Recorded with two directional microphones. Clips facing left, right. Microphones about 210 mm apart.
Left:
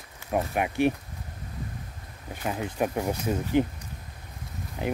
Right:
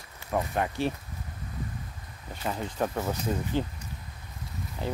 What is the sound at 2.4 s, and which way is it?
Speech, 10° left (ahead or behind).